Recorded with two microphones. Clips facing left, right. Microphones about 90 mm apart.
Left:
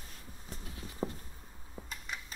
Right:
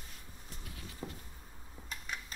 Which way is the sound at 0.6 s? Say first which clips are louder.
Left 7 dB; 30° left (ahead or behind).